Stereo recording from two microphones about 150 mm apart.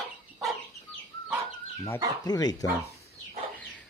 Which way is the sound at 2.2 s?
25° left (ahead or behind).